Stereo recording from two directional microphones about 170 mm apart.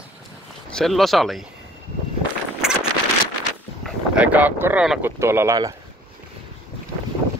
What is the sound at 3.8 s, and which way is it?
Speech, 5° right (ahead or behind).